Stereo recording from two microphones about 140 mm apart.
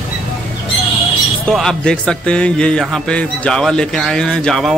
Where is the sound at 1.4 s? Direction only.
5° left (ahead or behind).